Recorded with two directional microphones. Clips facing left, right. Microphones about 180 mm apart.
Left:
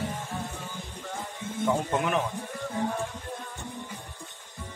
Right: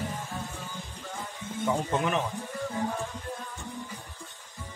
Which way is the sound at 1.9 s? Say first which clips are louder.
Left 1 dB; 5° left (ahead or behind).